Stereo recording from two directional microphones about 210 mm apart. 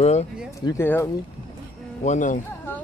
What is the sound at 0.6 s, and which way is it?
Speech, 10° left (ahead or behind).